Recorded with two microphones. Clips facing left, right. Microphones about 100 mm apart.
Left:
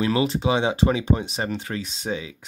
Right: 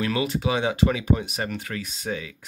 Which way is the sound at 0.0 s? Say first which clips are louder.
Left 3 dB; 25° left (ahead or behind).